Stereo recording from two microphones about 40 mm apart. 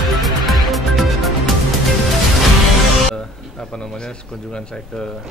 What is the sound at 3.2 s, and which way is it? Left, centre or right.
Speech, centre.